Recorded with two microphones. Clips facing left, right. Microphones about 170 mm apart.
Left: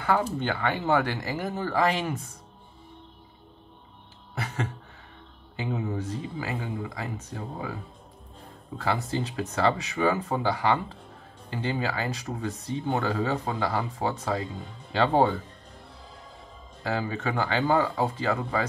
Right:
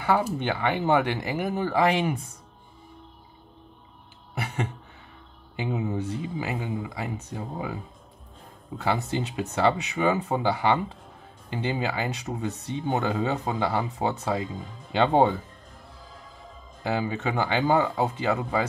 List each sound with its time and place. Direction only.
0.0 s speech: 10° right (ahead or behind)
4.4 s a sound: 15° right (ahead or behind)
5.6 s speech: 20° right (ahead or behind)
16.8 s speech: 20° right (ahead or behind)